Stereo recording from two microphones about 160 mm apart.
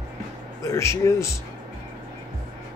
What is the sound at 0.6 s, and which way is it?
Speech, 20° left (ahead or behind).